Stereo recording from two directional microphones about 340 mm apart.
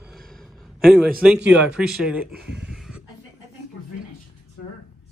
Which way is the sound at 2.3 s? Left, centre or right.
Right.